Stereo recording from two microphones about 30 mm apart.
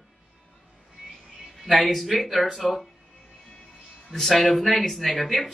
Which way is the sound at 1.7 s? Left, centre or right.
Centre.